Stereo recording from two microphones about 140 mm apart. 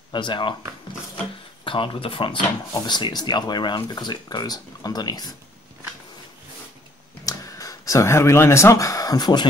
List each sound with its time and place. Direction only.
0.1 s speech: 35° left (ahead or behind)
1.6 s speech: 35° left (ahead or behind)
7.2 s speech: 25° left (ahead or behind)